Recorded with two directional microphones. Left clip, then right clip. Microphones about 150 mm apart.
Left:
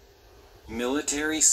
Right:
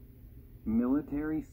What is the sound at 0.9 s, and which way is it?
Speech, 50° left (ahead or behind).